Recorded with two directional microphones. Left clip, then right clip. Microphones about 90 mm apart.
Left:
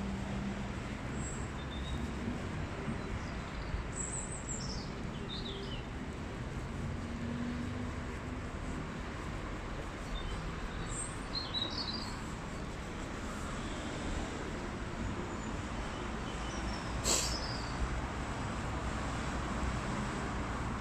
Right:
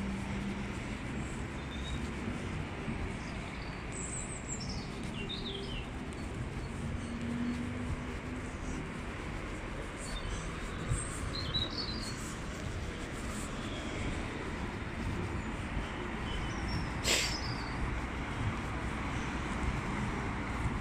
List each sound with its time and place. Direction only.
17.0 s vehicle: 45° left (ahead or behind)